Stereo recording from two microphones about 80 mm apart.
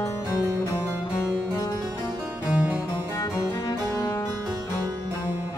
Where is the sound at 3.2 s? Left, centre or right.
Left.